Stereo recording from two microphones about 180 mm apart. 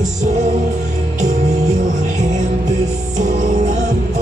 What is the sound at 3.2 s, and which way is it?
Music, 45° right (ahead or behind).